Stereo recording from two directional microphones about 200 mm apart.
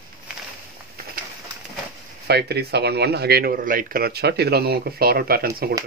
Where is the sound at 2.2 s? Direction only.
55° right (ahead or behind).